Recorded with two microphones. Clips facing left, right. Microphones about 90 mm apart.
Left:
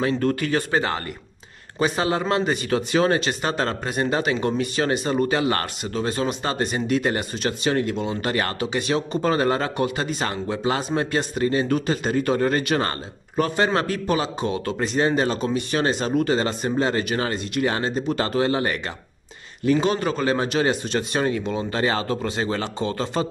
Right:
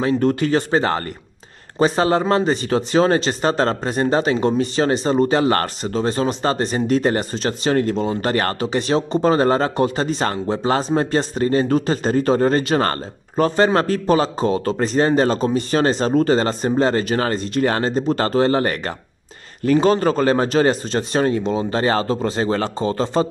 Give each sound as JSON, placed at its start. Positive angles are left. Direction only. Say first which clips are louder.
{"t": 0.2, "sound": "speech", "louder": "right 5 dB", "side_deg": -25}
{"t": 5.4, "sound": "speech", "louder": "right 5 dB", "side_deg": -45}